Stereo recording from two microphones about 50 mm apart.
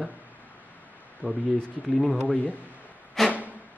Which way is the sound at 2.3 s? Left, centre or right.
Left.